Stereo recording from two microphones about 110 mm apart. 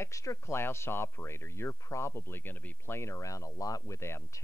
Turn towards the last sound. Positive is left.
turn(degrees=25)  # may be behind; listen again after turning